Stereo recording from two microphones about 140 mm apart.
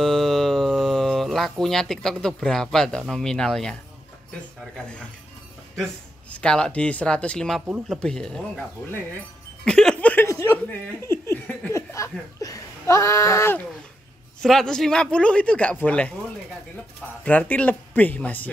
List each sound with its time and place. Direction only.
0.0 s speech: 5° left (ahead or behind)
4.7 s speech: 5° left (ahead or behind)
6.3 s speech: 5° left (ahead or behind)
7.6 s speech: 10° right (ahead or behind)
8.0 s speech: 5° left (ahead or behind)
9.7 s chuckle: 5° left (ahead or behind)
14.4 s speech: 5° left (ahead or behind)
17.2 s speech: 10° left (ahead or behind)